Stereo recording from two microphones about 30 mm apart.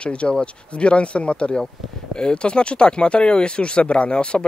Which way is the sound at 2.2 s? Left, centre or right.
Left.